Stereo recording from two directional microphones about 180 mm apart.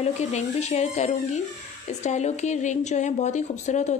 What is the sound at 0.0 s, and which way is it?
Speech, 40° left (ahead or behind).